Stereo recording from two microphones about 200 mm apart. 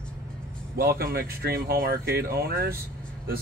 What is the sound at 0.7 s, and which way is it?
Speech, 50° right (ahead or behind).